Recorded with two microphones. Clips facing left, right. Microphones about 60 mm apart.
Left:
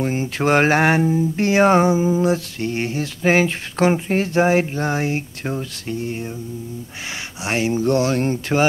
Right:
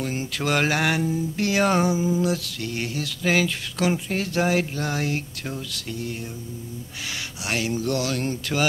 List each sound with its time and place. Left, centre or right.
0.0 s speech: left
7.4 s speech: left